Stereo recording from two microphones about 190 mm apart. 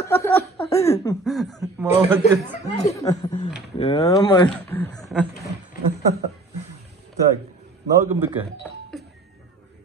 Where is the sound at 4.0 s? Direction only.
20° left (ahead or behind).